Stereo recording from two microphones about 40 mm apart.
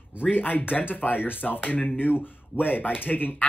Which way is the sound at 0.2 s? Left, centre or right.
Left.